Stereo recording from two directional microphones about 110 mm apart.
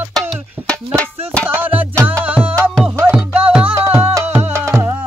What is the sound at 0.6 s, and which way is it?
Music, 10° left (ahead or behind).